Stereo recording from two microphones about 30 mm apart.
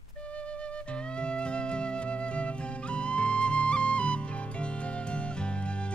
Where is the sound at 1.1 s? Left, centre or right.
Left.